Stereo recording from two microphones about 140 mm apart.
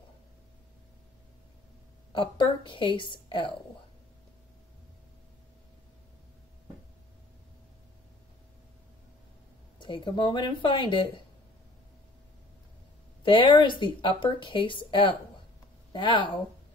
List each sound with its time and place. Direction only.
2.1 s a woman's voice: 35° left (ahead or behind)
9.8 s a woman's voice: 35° left (ahead or behind)
13.2 s a woman's voice: 35° left (ahead or behind)